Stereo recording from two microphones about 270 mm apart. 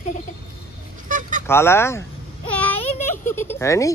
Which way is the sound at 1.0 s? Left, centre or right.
Right.